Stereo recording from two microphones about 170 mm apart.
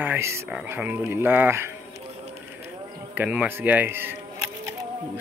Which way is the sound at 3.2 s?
10° right (ahead or behind).